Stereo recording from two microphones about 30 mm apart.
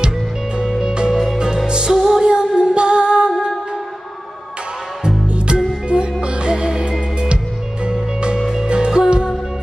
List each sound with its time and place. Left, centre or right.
0.7 s music: centre
2.0 s music: centre
2.2 s music: right
5.5 s music: right
5.9 s music: right